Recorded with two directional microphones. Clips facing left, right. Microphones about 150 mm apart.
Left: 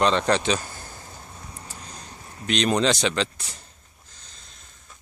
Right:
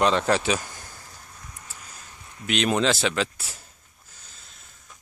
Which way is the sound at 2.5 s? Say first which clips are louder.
Left 1 dB; 5° right (ahead or behind).